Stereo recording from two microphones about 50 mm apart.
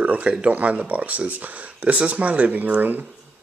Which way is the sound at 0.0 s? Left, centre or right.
Right.